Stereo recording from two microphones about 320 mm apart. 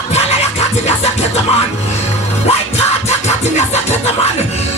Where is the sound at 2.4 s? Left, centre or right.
Centre.